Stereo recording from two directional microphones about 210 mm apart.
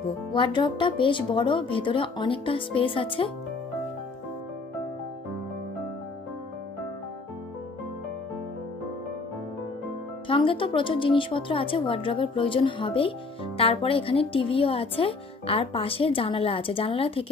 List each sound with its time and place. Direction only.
0.3 s a woman's voice: 20° left (ahead or behind)
10.2 s a woman's voice: 25° left (ahead or behind)